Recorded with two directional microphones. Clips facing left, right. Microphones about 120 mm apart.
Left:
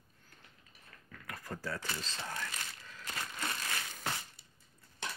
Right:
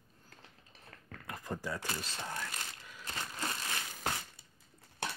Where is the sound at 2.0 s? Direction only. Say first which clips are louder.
Right 1 dB; 10° right (ahead or behind).